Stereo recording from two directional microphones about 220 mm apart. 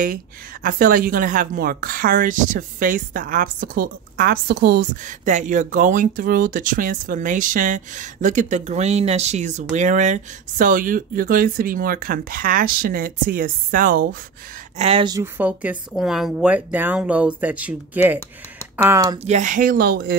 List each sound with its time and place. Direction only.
0.0 s speech: 40° right (ahead or behind)
5.0 s speech: 35° right (ahead or behind)
14.8 s speech: 25° right (ahead or behind)
19.2 s speech: 35° right (ahead or behind)